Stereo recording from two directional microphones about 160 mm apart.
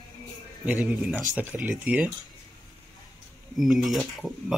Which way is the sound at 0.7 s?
10° right (ahead or behind).